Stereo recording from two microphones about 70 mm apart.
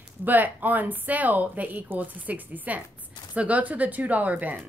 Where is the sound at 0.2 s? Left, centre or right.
Right.